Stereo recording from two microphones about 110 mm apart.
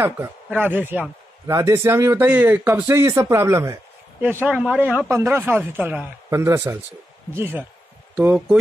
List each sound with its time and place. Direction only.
0.0 s speech: 15° right (ahead or behind)